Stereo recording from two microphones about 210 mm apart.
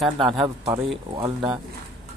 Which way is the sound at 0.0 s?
Centre (ahead or behind).